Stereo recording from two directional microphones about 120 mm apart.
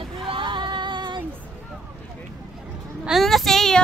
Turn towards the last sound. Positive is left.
turn(degrees=5)  # may be behind; listen again after turning